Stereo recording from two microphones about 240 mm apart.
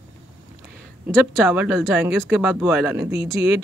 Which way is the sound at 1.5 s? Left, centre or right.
Centre.